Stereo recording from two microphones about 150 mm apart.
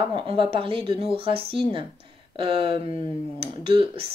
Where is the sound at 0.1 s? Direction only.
35° right (ahead or behind).